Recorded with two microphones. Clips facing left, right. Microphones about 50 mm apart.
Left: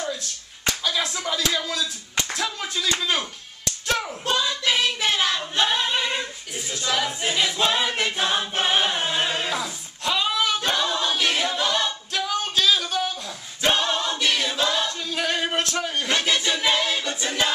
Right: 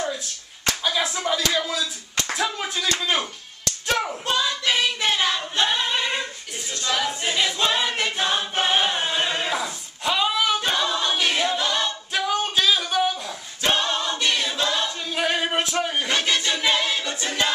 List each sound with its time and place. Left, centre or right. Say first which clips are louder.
0.8 s clapping: right 3 dB; centre
1.5 s speech: right 2 dB; centre
4.3 s singing: left 1 dB; centre
6.7 s choir: even; centre
12.1 s a sound: right 2 dB; centre
13.6 s choir: left 1 dB; centre
15.0 s music: right 1 dB; centre
16.1 s music: even; centre